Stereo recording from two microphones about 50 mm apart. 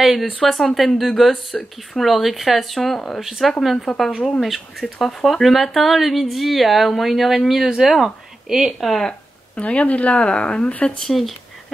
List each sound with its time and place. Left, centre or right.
0.0 s speech: centre
8.5 s speech: centre
8.8 s speech: centre
9.6 s speech: left
10.2 s speech: centre
11.1 s speech: centre